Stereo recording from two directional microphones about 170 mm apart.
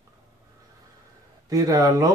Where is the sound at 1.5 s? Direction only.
20° right (ahead or behind).